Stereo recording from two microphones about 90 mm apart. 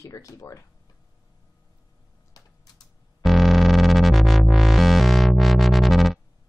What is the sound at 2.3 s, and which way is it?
Typing, 45° left (ahead or behind).